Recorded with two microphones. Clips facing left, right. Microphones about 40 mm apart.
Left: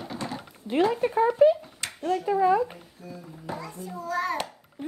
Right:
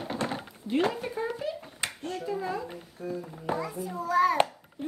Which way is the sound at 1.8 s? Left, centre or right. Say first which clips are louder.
Right 2 dB; centre.